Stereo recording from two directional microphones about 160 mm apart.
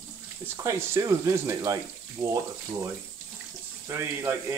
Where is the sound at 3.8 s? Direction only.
15° right (ahead or behind).